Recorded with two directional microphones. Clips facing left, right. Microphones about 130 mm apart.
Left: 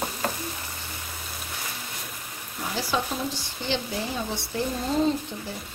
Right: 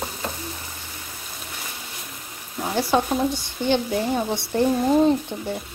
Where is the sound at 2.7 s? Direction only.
55° right (ahead or behind).